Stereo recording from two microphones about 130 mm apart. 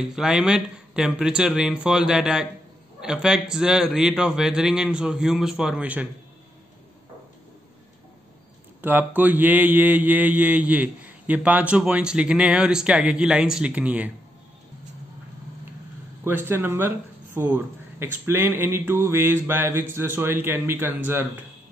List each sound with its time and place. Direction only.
0.1 s a man's voice: 5° right (ahead or behind)
8.8 s mantra: 15° right (ahead or behind)
16.3 s mantra: 15° right (ahead or behind)